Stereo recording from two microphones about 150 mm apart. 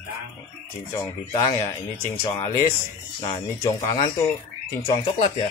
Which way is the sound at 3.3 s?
20° left (ahead or behind).